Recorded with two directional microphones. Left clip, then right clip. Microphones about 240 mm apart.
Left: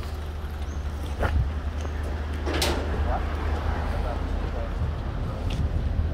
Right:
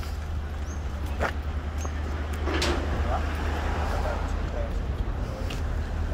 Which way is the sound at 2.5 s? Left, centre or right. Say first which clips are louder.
Left 1 dB; left.